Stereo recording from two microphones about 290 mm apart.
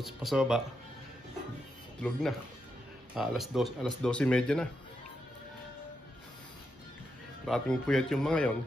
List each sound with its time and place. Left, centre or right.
0.0 s speech: centre
2.0 s speech: centre
7.4 s speech: centre